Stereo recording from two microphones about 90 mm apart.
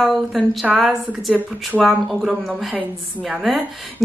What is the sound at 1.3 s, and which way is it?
Speech, 15° right (ahead or behind).